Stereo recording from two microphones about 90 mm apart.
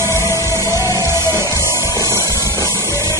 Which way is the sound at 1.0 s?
30° right (ahead or behind).